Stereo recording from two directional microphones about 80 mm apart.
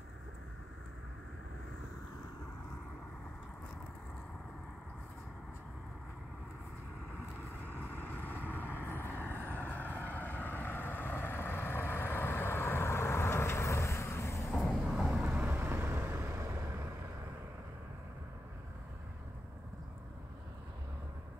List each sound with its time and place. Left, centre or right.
8.1 s vehicle: left
14.5 s vehicle: centre
15.4 s vehicle: right